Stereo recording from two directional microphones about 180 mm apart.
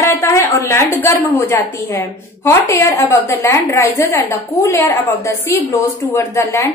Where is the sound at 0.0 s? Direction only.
15° left (ahead or behind).